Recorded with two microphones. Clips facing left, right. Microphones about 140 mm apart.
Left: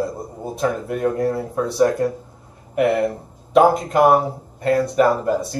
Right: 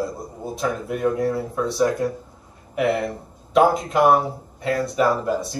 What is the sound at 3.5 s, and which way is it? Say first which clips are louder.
Speech: left 3 dB; 50° left (ahead or behind).